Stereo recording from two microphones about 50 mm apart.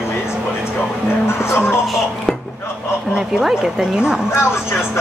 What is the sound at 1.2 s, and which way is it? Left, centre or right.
Music, left.